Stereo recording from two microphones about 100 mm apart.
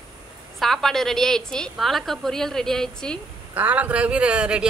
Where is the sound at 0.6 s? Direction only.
Centre (ahead or behind).